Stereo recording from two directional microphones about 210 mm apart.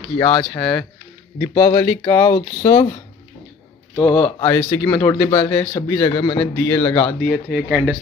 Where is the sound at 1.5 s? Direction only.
30° left (ahead or behind).